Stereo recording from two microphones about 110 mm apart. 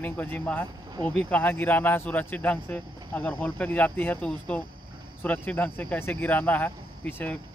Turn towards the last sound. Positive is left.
turn(degrees=15)  # may be behind; listen again after turning